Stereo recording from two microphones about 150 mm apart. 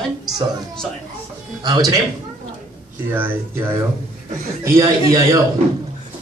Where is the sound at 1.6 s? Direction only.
25° right (ahead or behind).